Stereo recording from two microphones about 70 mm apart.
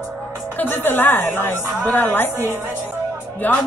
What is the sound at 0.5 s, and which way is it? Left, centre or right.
A woman's voice, left.